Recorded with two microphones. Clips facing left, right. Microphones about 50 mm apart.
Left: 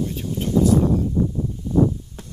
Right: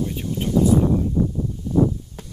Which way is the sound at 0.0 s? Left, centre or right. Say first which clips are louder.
Even; centre.